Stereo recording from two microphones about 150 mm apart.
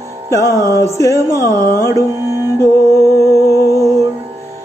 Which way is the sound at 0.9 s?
20° left (ahead or behind).